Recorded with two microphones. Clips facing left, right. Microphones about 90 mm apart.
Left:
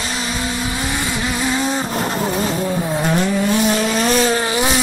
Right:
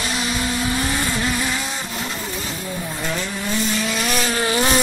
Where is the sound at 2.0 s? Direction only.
50° left (ahead or behind).